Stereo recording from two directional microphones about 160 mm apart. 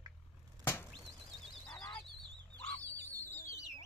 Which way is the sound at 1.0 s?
Centre (ahead or behind).